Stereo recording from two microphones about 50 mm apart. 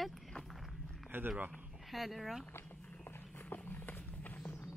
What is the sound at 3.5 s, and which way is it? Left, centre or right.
Run, left.